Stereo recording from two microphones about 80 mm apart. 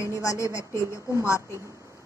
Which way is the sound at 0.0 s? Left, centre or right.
Left.